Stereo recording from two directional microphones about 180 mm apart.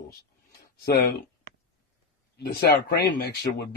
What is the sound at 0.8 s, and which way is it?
Speech, 60° left (ahead or behind).